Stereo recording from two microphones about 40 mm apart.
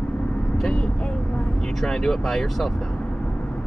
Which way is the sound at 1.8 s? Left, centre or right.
Centre.